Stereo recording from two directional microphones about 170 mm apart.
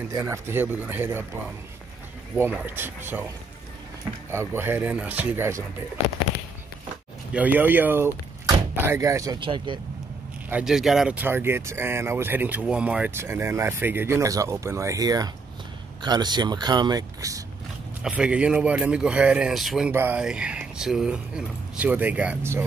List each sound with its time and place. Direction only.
0.1 s speech: 15° right (ahead or behind)
2.3 s speech: 10° right (ahead or behind)
4.3 s speech: 15° right (ahead or behind)
7.3 s speech: 10° right (ahead or behind); by 9.8 s 30° right (ahead or behind)
10.5 s speech: 5° right (ahead or behind); by 17.4 s 20° right (ahead or behind)
18.0 s speech: 5° right (ahead or behind)
19.9 s speech: 10° right (ahead or behind)